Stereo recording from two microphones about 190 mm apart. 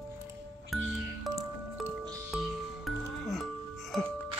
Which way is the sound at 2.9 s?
Centre (ahead or behind).